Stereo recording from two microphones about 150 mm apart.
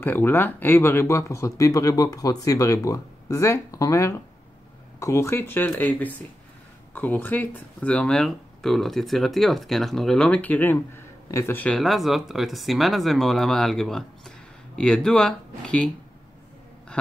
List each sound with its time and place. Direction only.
0.0 s speech: 15° left (ahead or behind)